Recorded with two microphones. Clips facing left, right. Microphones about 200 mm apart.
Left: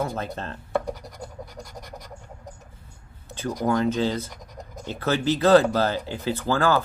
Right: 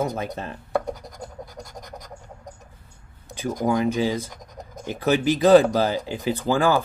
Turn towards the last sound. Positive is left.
turn(degrees=-15)  # may be behind; listen again after turning